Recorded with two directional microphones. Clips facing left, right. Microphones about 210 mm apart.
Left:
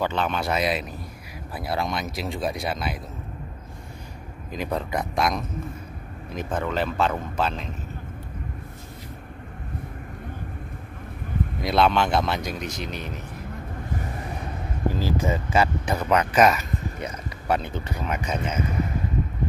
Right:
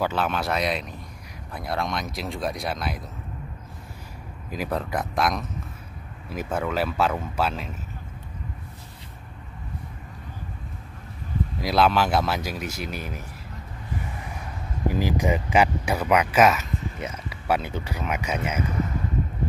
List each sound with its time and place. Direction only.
0.0 s speech: 5° right (ahead or behind)
4.5 s speech: 5° right (ahead or behind)
11.6 s speech: 5° right (ahead or behind)
14.9 s speech: 15° right (ahead or behind)